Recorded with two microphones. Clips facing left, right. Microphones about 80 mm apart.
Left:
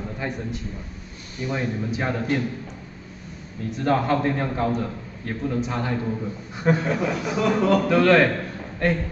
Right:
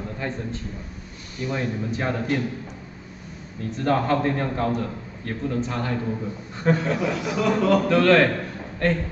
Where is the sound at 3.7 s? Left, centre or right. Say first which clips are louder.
Even; centre.